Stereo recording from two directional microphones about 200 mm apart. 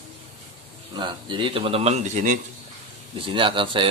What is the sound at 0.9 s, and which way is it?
Speech, 25° right (ahead or behind).